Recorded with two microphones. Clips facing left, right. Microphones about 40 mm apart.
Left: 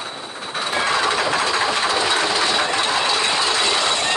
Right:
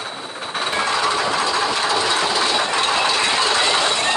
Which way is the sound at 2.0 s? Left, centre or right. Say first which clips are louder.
Even; centre.